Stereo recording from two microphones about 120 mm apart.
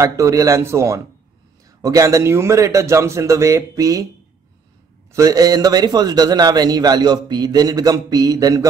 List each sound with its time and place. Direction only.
0.0 s a man's voice: 25° right (ahead or behind)
5.1 s a man's voice: 30° right (ahead or behind)